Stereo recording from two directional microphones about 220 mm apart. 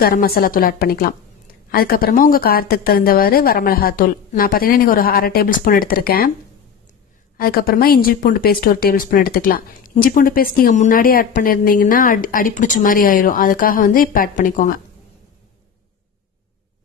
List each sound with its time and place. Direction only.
0.0 s speech: 40° left (ahead or behind)
7.3 s speech: 45° left (ahead or behind)